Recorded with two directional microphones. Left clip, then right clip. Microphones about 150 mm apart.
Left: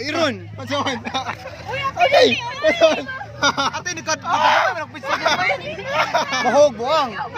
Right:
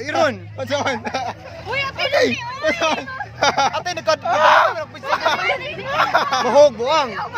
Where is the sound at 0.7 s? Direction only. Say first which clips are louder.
Right 1 dB; 50° right (ahead or behind).